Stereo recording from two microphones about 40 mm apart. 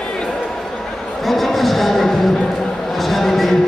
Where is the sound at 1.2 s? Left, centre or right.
Centre.